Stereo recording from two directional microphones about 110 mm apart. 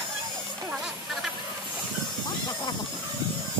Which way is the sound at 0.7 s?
5° right (ahead or behind).